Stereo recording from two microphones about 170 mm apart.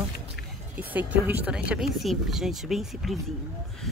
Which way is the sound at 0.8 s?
10° right (ahead or behind).